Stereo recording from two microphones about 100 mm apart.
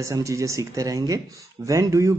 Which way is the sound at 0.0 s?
30° right (ahead or behind).